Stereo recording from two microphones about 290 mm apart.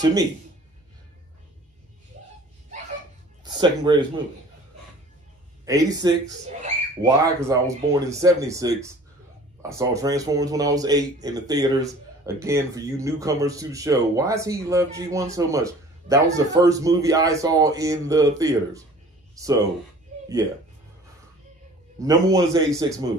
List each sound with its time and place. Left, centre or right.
0.0 s a man's voice: centre
3.4 s speech: centre
5.7 s a man's voice: centre
22.0 s a man's voice: centre